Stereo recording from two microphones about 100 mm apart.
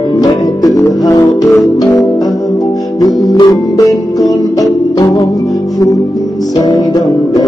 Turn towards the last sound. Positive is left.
turn(degrees=40)  # may be behind; listen again after turning